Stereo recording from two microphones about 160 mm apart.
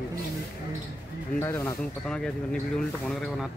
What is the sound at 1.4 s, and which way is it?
Speech, 15° left (ahead or behind).